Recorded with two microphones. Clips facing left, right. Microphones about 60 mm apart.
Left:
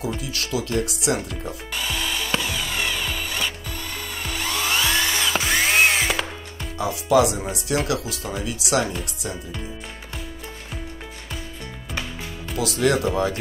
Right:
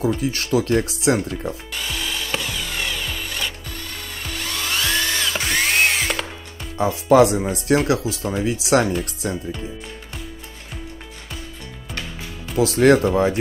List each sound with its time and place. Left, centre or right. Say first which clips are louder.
0.0 s speech: right 6 dB; right
1.7 s wood: left 1 dB; centre
4.3 s music: left 2 dB; centre
6.8 s speech: right 4 dB; right
7.9 s speech: right 5 dB; right
12.5 s speech: right 7 dB; right
13.0 s speech: right 4 dB; right